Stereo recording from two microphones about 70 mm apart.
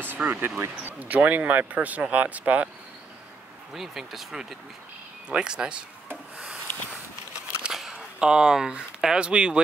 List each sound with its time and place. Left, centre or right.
0.1 s speech: right
3.7 s speech: centre
6.3 s a sound: centre
7.6 s speech: centre